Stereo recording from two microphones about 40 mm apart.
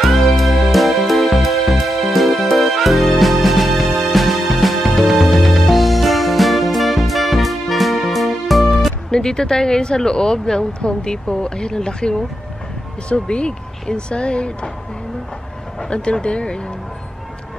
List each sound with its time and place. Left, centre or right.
0.0 s music: centre
9.1 s speech: centre
15.9 s speech: left